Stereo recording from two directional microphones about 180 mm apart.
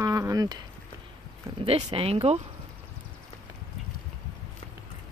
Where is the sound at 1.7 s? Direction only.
30° right (ahead or behind).